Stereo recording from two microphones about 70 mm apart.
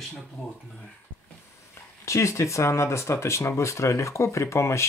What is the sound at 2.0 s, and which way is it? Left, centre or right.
Speech, left.